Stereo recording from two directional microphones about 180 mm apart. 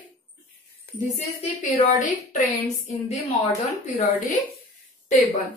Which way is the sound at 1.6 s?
40° left (ahead or behind).